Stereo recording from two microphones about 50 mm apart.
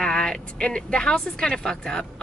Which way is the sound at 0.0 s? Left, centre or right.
Centre.